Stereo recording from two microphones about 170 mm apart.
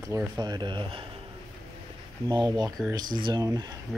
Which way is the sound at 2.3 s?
25° right (ahead or behind).